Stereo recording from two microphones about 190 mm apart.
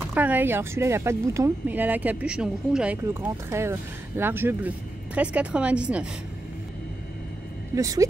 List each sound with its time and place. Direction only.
0.1 s speech: 10° right (ahead or behind)
7.7 s speech: 15° right (ahead or behind)